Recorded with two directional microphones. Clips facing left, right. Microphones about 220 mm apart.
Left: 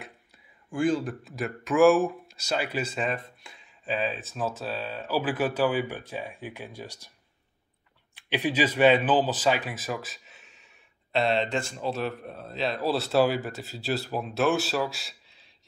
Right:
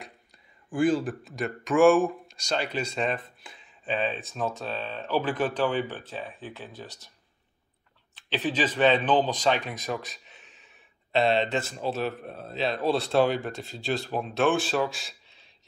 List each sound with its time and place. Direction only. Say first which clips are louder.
0.7 s speech: right 2 dB; 5° right (ahead or behind); by 7.1 s 10° left (ahead or behind)
8.1 s speech: left 1 dB; 10° left (ahead or behind)